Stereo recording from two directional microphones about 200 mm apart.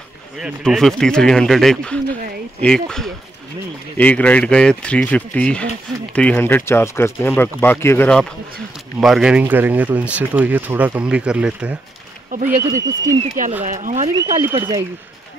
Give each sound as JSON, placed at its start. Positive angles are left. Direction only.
{"t": 0.4, "sound": "speech", "side_deg": 0}
{"t": 12.4, "sound": "speech", "side_deg": -15}
{"t": 13.7, "sound": "speech", "side_deg": -40}
{"t": 14.1, "sound": "speech", "side_deg": -15}